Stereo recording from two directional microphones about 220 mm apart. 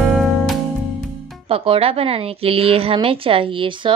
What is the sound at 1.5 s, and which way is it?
A woman's voice, 25° right (ahead or behind).